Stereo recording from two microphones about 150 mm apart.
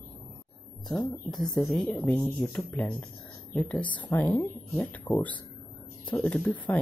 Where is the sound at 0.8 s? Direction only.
Centre (ahead or behind).